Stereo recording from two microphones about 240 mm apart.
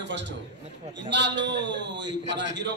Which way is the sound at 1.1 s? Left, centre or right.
Right.